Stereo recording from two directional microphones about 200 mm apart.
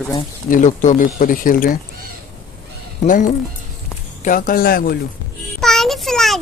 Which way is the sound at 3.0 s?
40° left (ahead or behind).